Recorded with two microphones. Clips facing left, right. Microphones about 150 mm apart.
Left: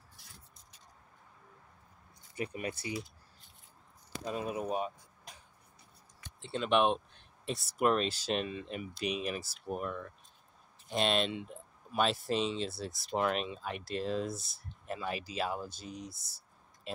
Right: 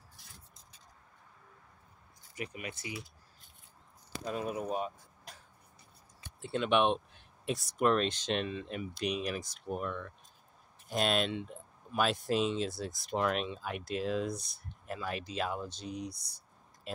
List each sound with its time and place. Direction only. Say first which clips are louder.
2.3 s speech: left 4 dB; 35° left (ahead or behind)
4.3 s speech: even; centre (ahead or behind)
6.5 s speech: even; centre (ahead or behind)